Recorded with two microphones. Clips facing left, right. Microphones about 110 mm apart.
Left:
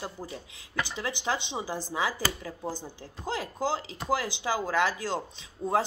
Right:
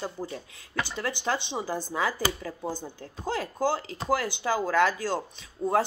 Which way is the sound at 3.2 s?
15° left (ahead or behind).